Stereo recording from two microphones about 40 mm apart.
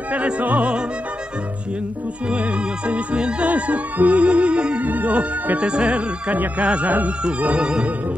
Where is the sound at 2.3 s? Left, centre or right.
Right.